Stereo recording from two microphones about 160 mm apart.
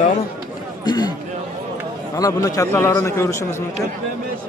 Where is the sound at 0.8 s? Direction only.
25° left (ahead or behind).